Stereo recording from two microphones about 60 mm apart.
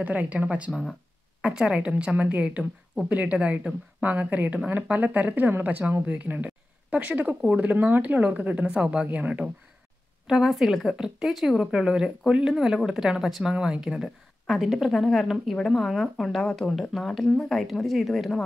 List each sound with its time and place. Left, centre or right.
0.0 s speech: right
1.4 s speech: centre
10.2 s speech: centre
14.9 s speech: centre